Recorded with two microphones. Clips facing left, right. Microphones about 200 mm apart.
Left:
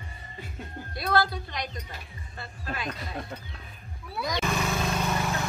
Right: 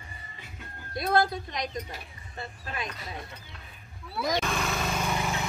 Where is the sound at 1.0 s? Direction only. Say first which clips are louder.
Right 1 dB; 20° right (ahead or behind).